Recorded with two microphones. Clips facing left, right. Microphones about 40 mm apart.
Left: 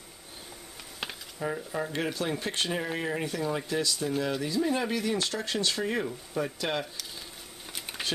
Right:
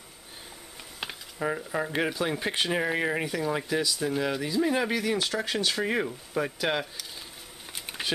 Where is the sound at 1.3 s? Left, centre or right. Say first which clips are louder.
Right 3 dB; right.